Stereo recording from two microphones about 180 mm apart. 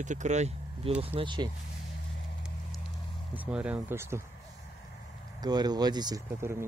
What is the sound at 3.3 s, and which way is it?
Speech, 5° right (ahead or behind).